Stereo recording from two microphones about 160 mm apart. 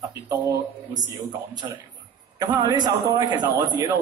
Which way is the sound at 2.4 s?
25° right (ahead or behind).